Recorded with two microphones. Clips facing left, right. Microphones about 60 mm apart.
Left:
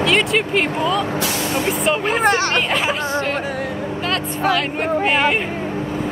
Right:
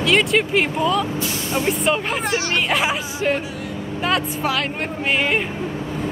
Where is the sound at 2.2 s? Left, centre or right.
Left.